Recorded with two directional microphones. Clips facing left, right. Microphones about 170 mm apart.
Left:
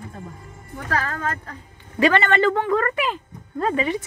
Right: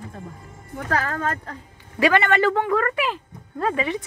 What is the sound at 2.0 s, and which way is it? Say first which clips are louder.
Speech: left 1 dB; 5° right (ahead or behind).